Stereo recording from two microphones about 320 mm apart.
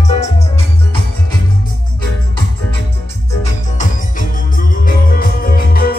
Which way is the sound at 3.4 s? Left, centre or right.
Left.